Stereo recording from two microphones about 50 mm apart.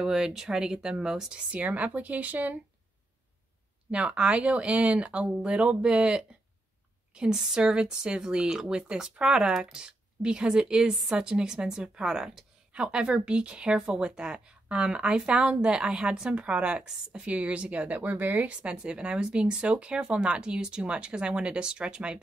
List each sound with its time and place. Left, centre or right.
0.0 s speech: centre
1.5 s speech: right
3.9 s speech: right
7.3 s speech: centre; by 18.5 s right
18.5 s speech: right